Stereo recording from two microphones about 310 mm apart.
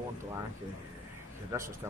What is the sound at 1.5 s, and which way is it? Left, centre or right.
Speech, centre.